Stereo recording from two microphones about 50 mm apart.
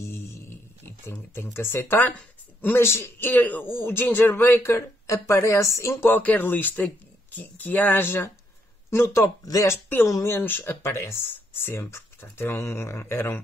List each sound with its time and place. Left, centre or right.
0.0 s a sound: left
1.3 s speech: left
1.9 s speech: left
2.6 s speech: left
3.2 s speech: left
3.7 s speech: left
6.2 s speech: left
9.2 s speech: left
10.3 s speech: left
10.8 s speech: left
11.5 s speech: left
11.8 s speech: left
12.5 s speech: left